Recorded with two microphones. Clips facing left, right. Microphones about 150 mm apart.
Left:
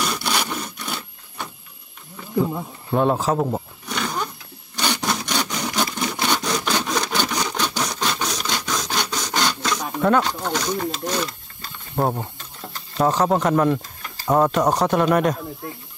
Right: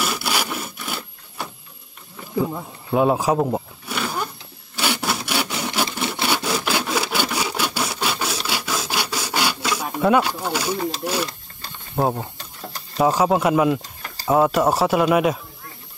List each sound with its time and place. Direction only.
0.0 s sawing: 5° right (ahead or behind)
2.3 s wild animals: 5° right (ahead or behind)
4.7 s wood: 5° right (ahead or behind)
6.2 s sawing: 5° right (ahead or behind)
11.9 s speech: 5° right (ahead or behind)